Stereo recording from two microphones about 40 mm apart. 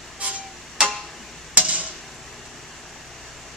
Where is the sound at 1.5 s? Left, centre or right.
Right.